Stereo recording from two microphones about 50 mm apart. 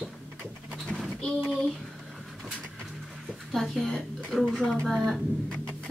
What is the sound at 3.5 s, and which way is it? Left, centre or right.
Speech, centre.